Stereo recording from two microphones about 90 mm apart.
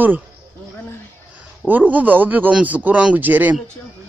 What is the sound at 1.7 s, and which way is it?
Speech, 20° right (ahead or behind).